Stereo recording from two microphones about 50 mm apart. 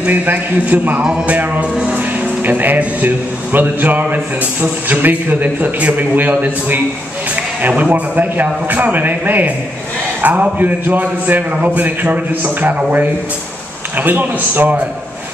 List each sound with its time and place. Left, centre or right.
0.1 s a man's voice: right